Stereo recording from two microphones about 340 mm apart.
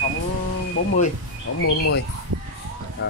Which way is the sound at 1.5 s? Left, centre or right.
Left.